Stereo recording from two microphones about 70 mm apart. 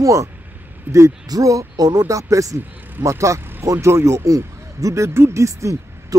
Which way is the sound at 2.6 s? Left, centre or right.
Right.